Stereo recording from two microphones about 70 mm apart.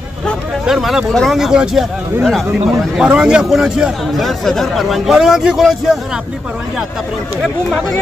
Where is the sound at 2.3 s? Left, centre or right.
Centre.